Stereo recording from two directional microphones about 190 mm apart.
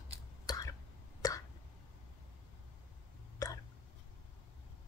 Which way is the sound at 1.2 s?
15° left (ahead or behind).